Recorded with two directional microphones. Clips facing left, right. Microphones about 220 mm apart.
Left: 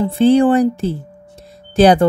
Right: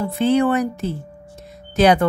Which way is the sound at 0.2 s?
30° left (ahead or behind).